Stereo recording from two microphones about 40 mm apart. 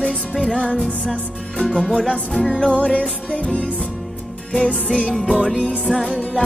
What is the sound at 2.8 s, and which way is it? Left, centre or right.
Music, left.